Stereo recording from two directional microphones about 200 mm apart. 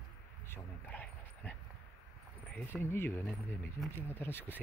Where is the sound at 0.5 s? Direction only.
10° left (ahead or behind).